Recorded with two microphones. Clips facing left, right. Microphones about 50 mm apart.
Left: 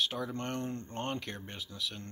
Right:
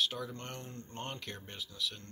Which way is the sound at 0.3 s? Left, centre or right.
Left.